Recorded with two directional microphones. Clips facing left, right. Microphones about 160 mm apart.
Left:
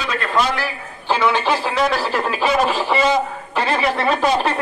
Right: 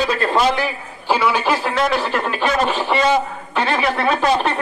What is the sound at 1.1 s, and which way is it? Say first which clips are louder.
Speech: even; 5° right (ahead or behind).